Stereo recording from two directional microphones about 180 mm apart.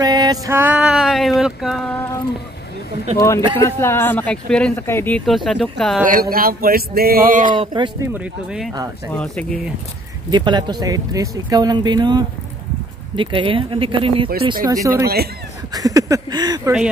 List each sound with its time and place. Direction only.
0.0 s music: 20° right (ahead or behind); by 1.3 s centre (ahead or behind)
1.4 s speech: centre (ahead or behind)
3.2 s speech: 15° left (ahead or behind); by 6.0 s centre (ahead or behind)
6.3 s a sound: 55° right (ahead or behind)
7.5 s speech: 25° right (ahead or behind)
8.1 s speech: 5° right (ahead or behind)
9.1 s speech: 5° left (ahead or behind)
10.3 s speech: 25° right (ahead or behind)